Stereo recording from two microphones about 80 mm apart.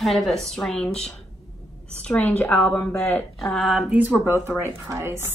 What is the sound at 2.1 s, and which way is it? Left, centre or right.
A woman's voice, left.